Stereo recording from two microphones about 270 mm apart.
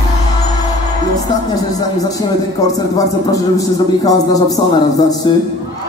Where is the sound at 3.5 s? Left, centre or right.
Centre.